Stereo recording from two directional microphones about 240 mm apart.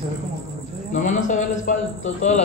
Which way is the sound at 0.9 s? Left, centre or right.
Left.